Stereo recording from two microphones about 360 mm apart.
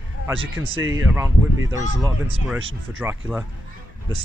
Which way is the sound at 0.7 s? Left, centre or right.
Right.